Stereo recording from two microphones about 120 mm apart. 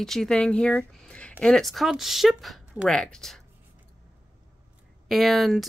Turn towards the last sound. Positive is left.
turn(degrees=0)  # may be behind; listen again after turning